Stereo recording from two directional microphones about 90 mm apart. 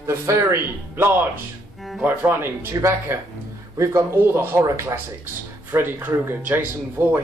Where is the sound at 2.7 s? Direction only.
35° right (ahead or behind).